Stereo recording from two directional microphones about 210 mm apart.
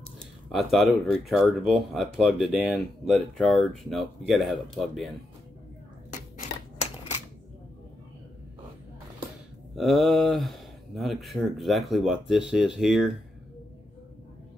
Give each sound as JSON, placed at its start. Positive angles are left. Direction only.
{"t": 0.6, "sound": "speech", "side_deg": 0}
{"t": 9.8, "sound": "speech", "side_deg": 0}